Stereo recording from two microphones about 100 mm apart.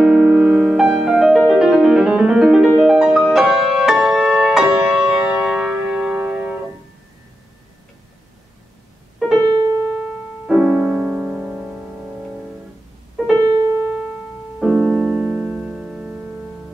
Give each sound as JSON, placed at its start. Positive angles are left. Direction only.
{"t": 0.0, "sound": "music", "side_deg": -10}
{"t": 9.5, "sound": "piano", "side_deg": -45}
{"t": 10.4, "sound": "music", "side_deg": -5}
{"t": 13.4, "sound": "keyboard", "side_deg": -40}
{"t": 14.6, "sound": "music", "side_deg": 0}